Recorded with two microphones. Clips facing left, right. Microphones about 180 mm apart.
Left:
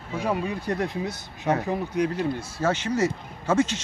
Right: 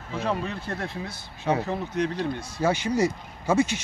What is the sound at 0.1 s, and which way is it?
Speech, 10° left (ahead or behind).